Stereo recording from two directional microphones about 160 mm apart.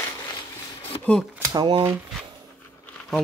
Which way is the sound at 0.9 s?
30° left (ahead or behind).